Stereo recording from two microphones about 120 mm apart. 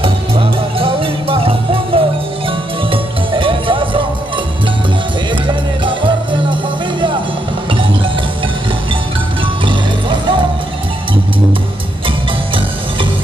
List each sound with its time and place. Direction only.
0.0 s music: 50° right (ahead or behind)
5.9 s music: 45° right (ahead or behind)
9.7 s music: 45° right (ahead or behind)